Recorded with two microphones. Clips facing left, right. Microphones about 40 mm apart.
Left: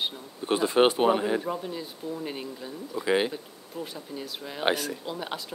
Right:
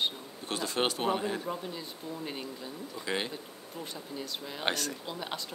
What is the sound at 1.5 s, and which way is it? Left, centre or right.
Speech, centre.